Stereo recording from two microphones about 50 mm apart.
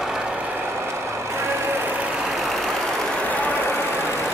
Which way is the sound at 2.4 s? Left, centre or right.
Centre.